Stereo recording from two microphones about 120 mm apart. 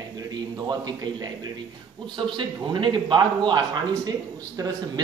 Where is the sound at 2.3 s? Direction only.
40° right (ahead or behind).